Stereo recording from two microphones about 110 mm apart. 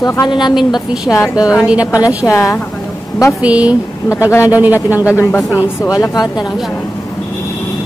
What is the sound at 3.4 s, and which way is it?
Speech, 10° right (ahead or behind).